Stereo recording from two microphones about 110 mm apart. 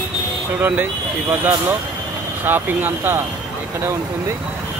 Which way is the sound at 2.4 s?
15° right (ahead or behind).